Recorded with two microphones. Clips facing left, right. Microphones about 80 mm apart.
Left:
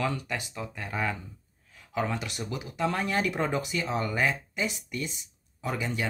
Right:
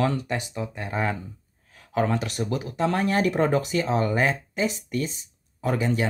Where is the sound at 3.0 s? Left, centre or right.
Right.